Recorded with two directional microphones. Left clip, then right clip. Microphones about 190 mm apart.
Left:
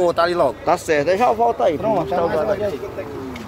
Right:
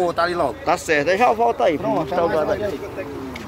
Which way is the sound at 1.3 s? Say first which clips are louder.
Left 1 dB; 10° right (ahead or behind).